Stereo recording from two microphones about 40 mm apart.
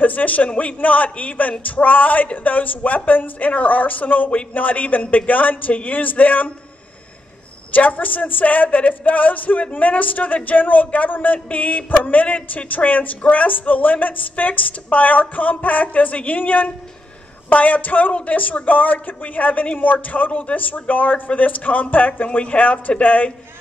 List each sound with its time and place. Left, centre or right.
0.0 s a man's voice: left
7.7 s speech: left